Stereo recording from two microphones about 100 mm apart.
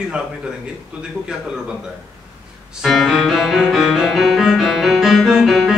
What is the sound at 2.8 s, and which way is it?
Music, centre (ahead or behind).